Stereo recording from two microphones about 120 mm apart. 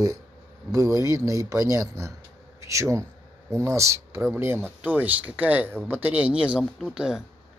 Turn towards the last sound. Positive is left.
turn(degrees=-5)  # may be behind; listen again after turning